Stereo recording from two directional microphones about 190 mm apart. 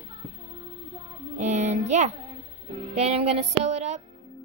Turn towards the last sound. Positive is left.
turn(degrees=-35)  # may be behind; listen again after turning